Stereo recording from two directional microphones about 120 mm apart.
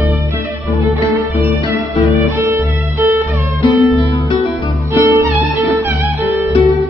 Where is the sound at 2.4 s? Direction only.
20° right (ahead or behind).